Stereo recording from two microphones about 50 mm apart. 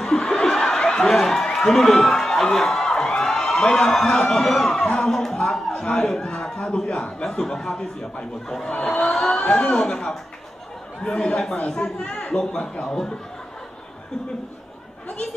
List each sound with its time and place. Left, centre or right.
0.0 s speech: centre
9.4 s a man's voice: left